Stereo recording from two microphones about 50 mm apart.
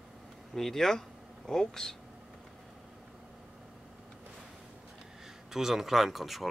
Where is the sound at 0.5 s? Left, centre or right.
Centre.